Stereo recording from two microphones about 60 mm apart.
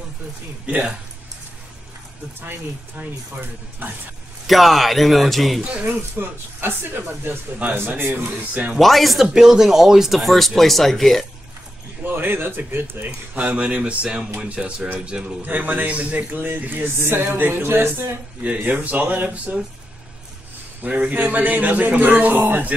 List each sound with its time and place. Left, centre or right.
0.7 s speech: right
4.5 s speech: centre
5.6 s speech: centre
5.9 s speech: right
8.3 s speech: right
8.7 s speech: centre
12.0 s speech: right
13.5 s speech: centre
15.4 s speech: right
17.0 s speech: right
18.4 s speech: right
20.8 s speech: right